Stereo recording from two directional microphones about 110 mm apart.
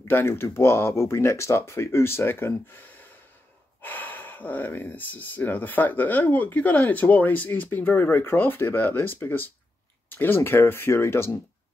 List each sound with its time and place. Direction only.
0.1 s speech: 25° left (ahead or behind)
3.8 s speech: 15° left (ahead or behind)